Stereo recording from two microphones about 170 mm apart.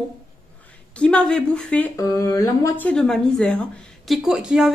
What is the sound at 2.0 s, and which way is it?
Speech, 20° left (ahead or behind).